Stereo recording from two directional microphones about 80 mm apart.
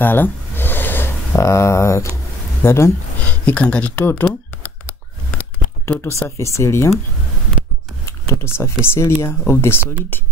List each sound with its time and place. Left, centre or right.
0.0 s a sound: left
2.6 s speech: left
3.3 s speech: centre
4.0 s shuffling cards: left
5.4 s tearing: left
6.2 s speech: left
8.0 s a sound: left
8.5 s speech: left